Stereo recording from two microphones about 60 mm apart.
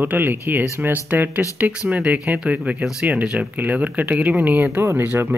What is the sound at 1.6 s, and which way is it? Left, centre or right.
Speech, right.